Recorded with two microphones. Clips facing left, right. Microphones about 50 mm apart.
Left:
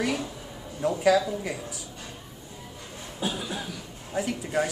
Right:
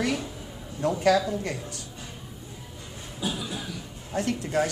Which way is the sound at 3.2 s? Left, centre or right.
Left.